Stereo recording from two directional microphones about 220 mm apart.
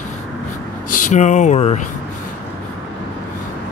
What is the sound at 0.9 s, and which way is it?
Speech, 35° left (ahead or behind).